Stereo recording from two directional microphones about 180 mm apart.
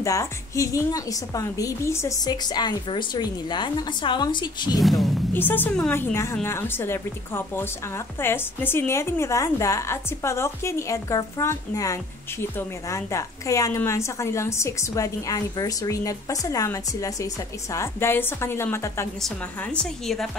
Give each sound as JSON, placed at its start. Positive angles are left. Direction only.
{"t": 0.0, "sound": "a woman's voice", "side_deg": 15}
{"t": 4.7, "sound": "a woman's voice", "side_deg": 0}
{"t": 5.3, "sound": "a woman's voice", "side_deg": 10}